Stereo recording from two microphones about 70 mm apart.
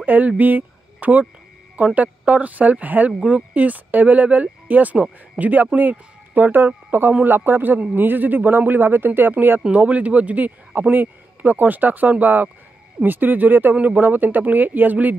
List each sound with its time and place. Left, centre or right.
0.0 s speech: right
9.6 s speech: centre